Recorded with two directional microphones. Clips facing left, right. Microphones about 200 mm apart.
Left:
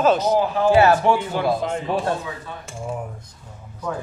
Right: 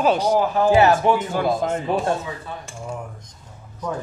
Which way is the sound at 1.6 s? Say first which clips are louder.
Right 2 dB; 45° right (ahead or behind).